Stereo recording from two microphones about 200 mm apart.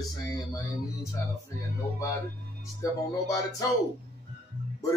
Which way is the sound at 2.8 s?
20° left (ahead or behind).